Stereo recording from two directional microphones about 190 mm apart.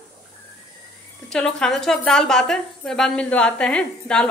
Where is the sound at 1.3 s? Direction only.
5° left (ahead or behind).